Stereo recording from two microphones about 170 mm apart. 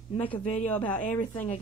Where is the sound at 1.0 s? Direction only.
45° left (ahead or behind).